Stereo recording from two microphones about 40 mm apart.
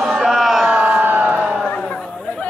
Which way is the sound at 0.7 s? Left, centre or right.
Right.